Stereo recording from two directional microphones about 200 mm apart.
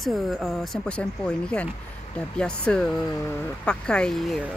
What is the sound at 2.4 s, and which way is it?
Speech, 5° left (ahead or behind).